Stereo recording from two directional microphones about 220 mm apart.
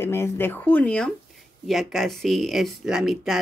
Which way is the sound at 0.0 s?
10° left (ahead or behind).